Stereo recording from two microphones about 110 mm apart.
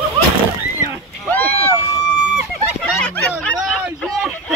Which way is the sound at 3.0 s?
15° left (ahead or behind).